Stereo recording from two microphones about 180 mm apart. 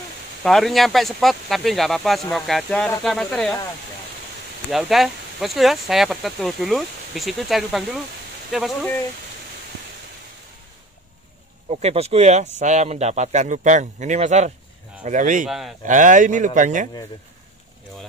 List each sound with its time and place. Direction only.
0.4 s speech: centre (ahead or behind)
4.6 s speech: centre (ahead or behind)
11.7 s speech: 35° right (ahead or behind)
15.4 s speech: centre (ahead or behind)
15.8 s speech: 45° right (ahead or behind)